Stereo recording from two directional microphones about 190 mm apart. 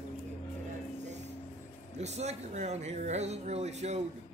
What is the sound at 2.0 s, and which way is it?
Speech, 35° right (ahead or behind).